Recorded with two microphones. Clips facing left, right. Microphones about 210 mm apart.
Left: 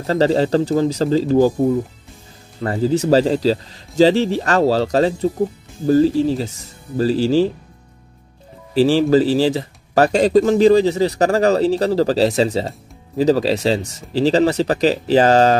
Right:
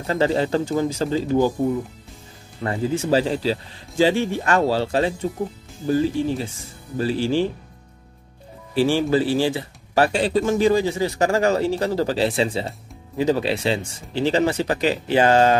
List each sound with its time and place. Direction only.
0.0 s speech: 35° left (ahead or behind)
2.6 s speech: 35° left (ahead or behind)
8.7 s speech: 35° left (ahead or behind)